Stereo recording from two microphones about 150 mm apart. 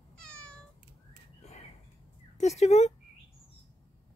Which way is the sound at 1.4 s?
45° left (ahead or behind).